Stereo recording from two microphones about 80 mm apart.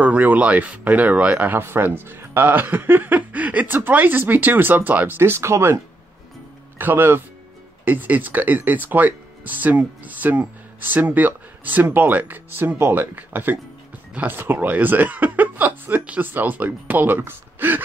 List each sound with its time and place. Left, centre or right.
0.0 s speech: centre
6.8 s speech: right